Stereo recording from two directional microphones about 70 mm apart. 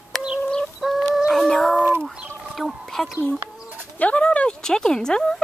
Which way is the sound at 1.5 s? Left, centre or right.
Centre.